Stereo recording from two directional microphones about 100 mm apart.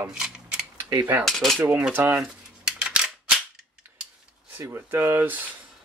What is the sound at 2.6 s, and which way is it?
Single-lens reflex camera, 10° right (ahead or behind).